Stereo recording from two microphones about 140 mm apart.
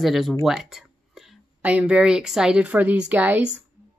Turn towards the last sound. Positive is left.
turn(degrees=-10)  # may be behind; listen again after turning